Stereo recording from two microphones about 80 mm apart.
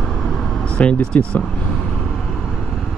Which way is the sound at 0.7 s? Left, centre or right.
Centre.